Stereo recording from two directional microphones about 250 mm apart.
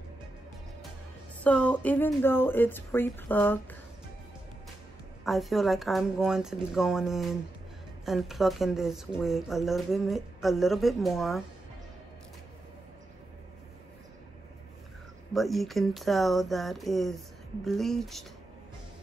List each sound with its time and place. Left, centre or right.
1.4 s speech: centre
5.2 s speech: centre
15.3 s speech: centre